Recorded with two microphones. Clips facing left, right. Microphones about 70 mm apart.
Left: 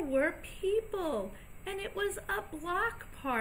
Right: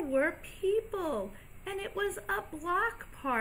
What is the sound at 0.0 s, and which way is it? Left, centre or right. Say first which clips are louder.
A woman's voice: right 1 dB; centre.